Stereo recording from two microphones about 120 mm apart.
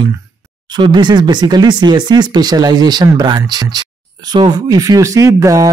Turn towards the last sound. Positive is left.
turn(degrees=-30)  # may be behind; listen again after turning